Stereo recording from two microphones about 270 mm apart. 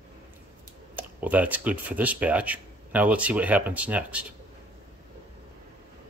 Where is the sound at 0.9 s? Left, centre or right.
Centre.